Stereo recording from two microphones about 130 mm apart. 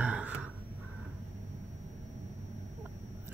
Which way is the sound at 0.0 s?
10° right (ahead or behind).